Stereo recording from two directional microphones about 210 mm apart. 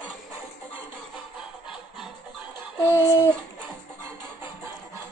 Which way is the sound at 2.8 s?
10° left (ahead or behind).